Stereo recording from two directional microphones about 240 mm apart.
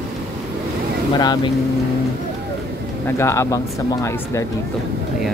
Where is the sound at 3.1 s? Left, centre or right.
Centre.